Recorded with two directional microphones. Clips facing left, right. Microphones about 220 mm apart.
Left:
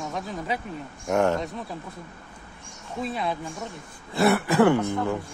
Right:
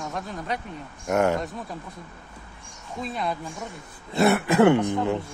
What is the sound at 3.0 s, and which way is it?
Speech, centre (ahead or behind).